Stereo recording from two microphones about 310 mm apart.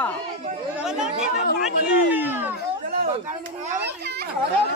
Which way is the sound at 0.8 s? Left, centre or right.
Centre.